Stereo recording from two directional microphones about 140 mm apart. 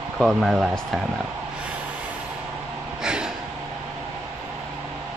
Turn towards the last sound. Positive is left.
turn(degrees=-5)  # may be behind; listen again after turning